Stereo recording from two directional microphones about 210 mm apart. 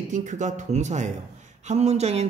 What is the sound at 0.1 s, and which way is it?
A man's voice, 35° right (ahead or behind).